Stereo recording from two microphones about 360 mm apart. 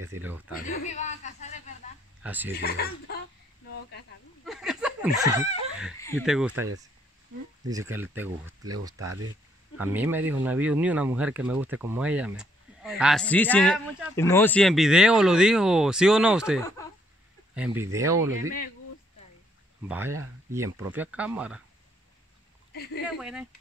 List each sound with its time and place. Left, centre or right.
0.1 s speech: centre
0.7 s speech: left
2.2 s speech: centre
2.6 s speech: left
4.5 s a sound: centre
5.9 s speech: centre
6.5 s speech: right
7.6 s speech: centre
8.9 s speech: right
9.8 s speech: centre
19.9 s speech: centre
23.1 s speech: centre